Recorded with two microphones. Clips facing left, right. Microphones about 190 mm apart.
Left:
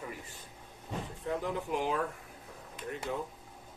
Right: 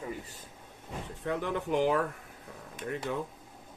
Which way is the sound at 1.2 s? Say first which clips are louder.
Right 3 dB; 70° right (ahead or behind).